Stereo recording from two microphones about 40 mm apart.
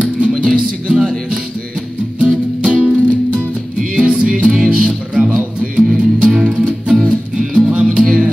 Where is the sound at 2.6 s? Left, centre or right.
Right.